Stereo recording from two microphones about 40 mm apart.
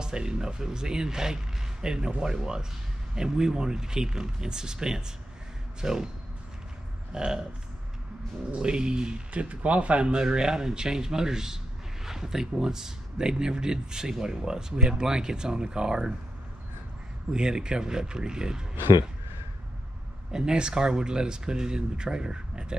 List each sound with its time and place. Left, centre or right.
0.0 s speech: centre
7.1 s a sound: right
8.5 s speech: right
9.3 s speech: right
17.3 s speech: centre
20.2 s speech: centre